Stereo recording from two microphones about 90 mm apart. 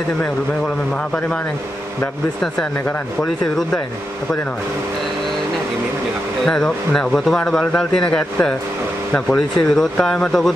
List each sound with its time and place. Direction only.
3.2 s speech: 5° left (ahead or behind)
6.4 s speech: 5° left (ahead or behind)